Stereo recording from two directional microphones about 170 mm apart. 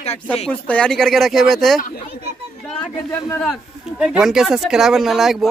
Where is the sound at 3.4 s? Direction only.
5° right (ahead or behind).